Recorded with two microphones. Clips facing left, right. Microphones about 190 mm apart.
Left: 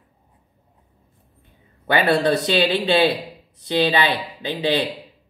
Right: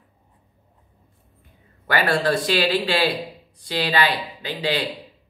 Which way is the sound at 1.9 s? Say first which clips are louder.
Left 3 dB; 20° left (ahead or behind).